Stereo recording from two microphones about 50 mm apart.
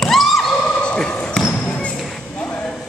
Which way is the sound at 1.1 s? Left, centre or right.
Left.